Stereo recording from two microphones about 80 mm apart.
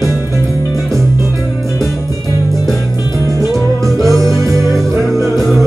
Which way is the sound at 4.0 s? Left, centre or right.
Right.